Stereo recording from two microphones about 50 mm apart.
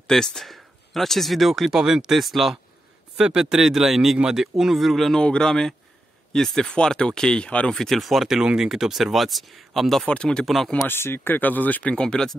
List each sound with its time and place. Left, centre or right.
0.0 s a man's voice: centre
3.2 s a man's voice: centre
5.2 s speech: centre
7.7 s speech: centre
10.0 s speech: centre
10.4 s speech: centre
10.9 s speech: left
11.9 s speech: centre